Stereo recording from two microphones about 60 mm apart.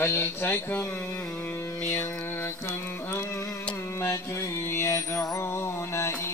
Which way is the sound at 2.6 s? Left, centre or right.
Left.